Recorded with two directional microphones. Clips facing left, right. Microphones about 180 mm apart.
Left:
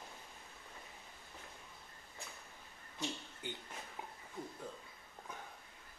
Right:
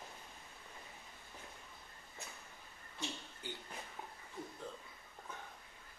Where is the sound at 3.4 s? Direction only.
20° left (ahead or behind).